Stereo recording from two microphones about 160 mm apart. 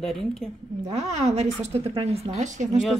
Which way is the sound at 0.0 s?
5° left (ahead or behind).